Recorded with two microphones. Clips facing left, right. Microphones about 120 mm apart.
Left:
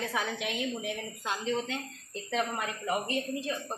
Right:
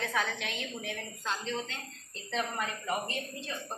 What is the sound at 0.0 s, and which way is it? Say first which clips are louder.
A woman's voice: left 1 dB; 10° left (ahead or behind).